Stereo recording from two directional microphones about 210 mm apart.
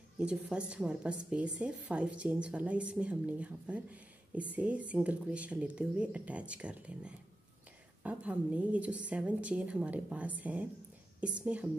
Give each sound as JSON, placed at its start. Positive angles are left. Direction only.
{"t": 0.2, "sound": "a woman's voice", "side_deg": -5}